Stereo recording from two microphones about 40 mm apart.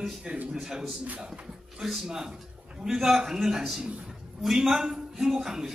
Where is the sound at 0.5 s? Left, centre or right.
Centre.